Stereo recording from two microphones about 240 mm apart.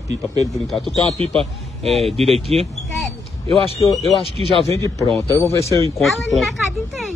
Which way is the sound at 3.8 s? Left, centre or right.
Centre.